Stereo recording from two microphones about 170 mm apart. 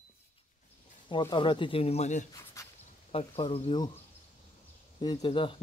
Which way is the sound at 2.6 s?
20° left (ahead or behind).